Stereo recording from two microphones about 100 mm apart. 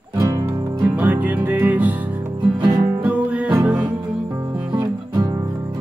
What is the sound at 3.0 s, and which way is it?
Music, 15° right (ahead or behind).